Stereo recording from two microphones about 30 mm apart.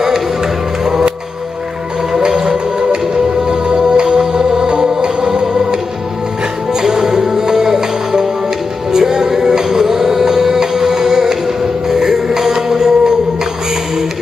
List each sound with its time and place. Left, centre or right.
2.1 s music: right